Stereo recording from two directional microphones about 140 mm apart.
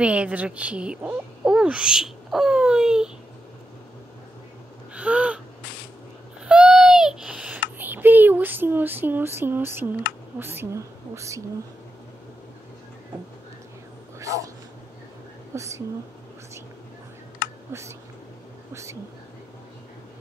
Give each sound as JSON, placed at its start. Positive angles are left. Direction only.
{"t": 0.0, "sound": "speech", "side_deg": -10}
{"t": 4.9, "sound": "gasp", "side_deg": -10}
{"t": 6.4, "sound": "a sound", "side_deg": -5}
{"t": 10.4, "sound": "a woman's voice", "side_deg": -15}
{"t": 14.2, "sound": "speech", "side_deg": -25}
{"t": 15.5, "sound": "a woman's voice", "side_deg": -20}
{"t": 18.7, "sound": "speech", "side_deg": -20}